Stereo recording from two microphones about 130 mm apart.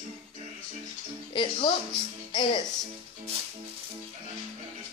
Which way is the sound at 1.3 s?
40° left (ahead or behind).